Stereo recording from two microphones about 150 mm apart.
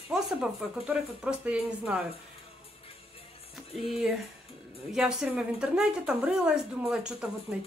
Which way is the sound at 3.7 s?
Centre (ahead or behind).